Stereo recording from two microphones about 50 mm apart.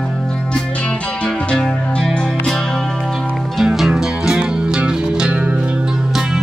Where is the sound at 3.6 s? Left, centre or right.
Centre.